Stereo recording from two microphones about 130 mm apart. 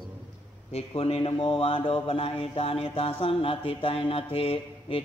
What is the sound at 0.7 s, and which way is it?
Speech, 50° left (ahead or behind).